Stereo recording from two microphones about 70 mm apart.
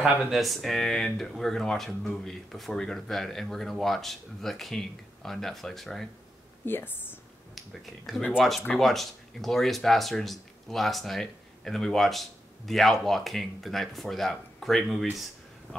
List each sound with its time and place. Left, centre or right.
0.3 s speech: centre
6.6 s speech: left
7.5 s speech: centre